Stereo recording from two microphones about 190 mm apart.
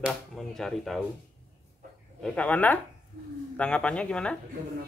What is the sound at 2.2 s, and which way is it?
Speech, 5° left (ahead or behind).